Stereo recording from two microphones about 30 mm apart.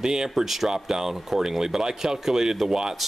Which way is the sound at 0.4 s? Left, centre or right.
Centre.